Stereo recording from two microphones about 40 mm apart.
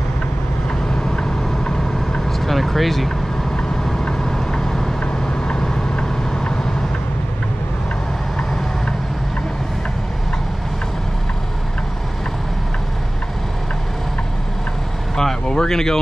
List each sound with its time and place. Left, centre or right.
0.8 s vehicle: centre
2.2 s vehicle: centre
4.2 s vehicle: centre
15.1 s a sound: centre